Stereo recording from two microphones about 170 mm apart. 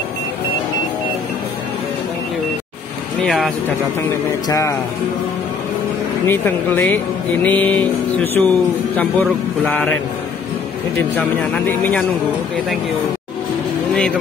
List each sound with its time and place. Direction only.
3.3 s speech: centre (ahead or behind)
4.5 s speech: 20° left (ahead or behind)
6.2 s speech: 10° left (ahead or behind)
11.1 s speech: 10° left (ahead or behind)